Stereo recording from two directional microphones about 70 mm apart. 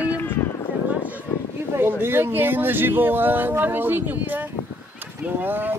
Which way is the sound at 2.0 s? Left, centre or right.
Right.